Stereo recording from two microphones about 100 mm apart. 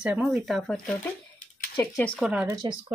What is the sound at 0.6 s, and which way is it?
Speech, 10° left (ahead or behind).